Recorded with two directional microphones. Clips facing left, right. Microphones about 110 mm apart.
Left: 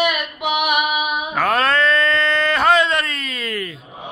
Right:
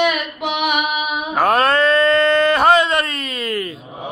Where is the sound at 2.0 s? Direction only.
45° right (ahead or behind).